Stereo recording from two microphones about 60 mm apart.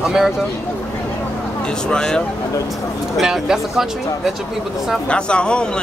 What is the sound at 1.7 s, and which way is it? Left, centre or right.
Speech, centre.